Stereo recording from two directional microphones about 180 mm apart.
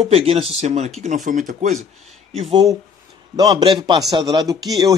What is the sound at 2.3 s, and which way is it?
A man's voice, 30° right (ahead or behind).